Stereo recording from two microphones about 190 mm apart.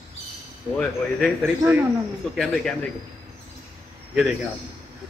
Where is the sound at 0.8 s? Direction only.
5° left (ahead or behind).